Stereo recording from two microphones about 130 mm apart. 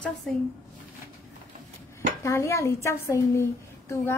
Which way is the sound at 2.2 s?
20° left (ahead or behind).